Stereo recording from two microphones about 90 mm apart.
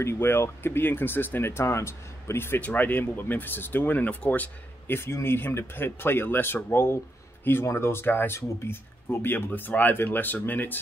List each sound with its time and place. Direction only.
0.0 s speech: 30° left (ahead or behind)